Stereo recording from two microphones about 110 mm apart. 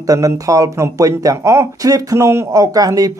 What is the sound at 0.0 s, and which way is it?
Speech, 30° right (ahead or behind).